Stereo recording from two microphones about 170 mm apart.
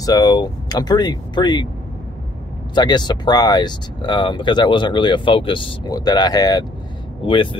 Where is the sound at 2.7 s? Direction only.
25° left (ahead or behind).